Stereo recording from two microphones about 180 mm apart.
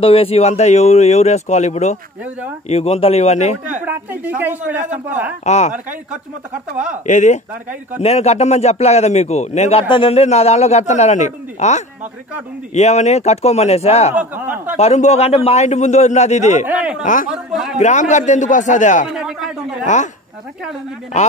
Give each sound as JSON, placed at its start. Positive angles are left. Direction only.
{"t": 0.0, "sound": "a man's voice", "side_deg": 30}
{"t": 3.8, "sound": "a woman's voice", "side_deg": -10}
{"t": 5.4, "sound": "a man's voice", "side_deg": 40}
{"t": 7.1, "sound": "a man's voice", "side_deg": 45}
{"t": 14.1, "sound": "a woman's voice", "side_deg": -10}
{"t": 14.8, "sound": "a man's voice", "side_deg": 35}
{"t": 16.6, "sound": "a woman's voice", "side_deg": -5}
{"t": 17.0, "sound": "a man's voice", "side_deg": 45}
{"t": 17.3, "sound": "a man's voice", "side_deg": 0}
{"t": 17.7, "sound": "a man's voice", "side_deg": 40}
{"t": 19.1, "sound": "a man's voice", "side_deg": 0}
{"t": 19.9, "sound": "a man's voice", "side_deg": 45}